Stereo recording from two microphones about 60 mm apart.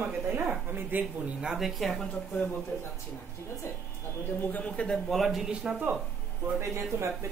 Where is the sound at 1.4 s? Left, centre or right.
Centre.